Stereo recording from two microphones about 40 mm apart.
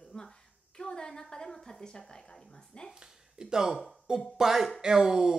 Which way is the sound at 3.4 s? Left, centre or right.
Centre.